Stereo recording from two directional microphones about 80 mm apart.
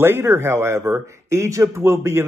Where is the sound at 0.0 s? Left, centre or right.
Right.